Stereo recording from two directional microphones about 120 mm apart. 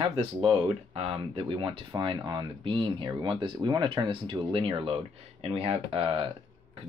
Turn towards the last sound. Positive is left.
turn(degrees=-50)  # may be behind; listen again after turning